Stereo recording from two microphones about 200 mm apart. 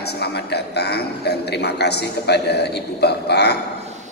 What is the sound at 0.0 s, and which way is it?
A man's voice, 55° left (ahead or behind).